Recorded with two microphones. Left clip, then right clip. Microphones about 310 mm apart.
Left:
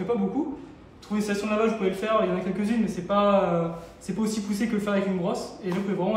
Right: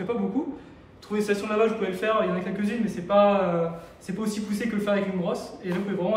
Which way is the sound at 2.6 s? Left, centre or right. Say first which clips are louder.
Left 1 dB; centre.